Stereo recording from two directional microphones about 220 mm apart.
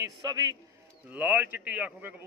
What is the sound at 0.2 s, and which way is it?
Speech, 15° right (ahead or behind).